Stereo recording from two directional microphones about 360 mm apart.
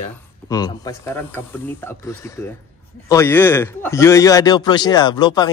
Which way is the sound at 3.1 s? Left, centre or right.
Centre.